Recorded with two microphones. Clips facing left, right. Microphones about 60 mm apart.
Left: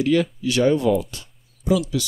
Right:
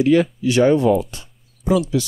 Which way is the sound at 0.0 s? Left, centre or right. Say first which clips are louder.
Right 4 dB; right.